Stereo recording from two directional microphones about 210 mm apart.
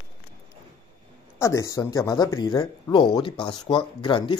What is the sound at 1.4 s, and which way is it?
Speech, 15° left (ahead or behind).